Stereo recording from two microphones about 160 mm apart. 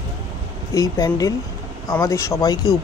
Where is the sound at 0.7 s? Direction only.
25° left (ahead or behind).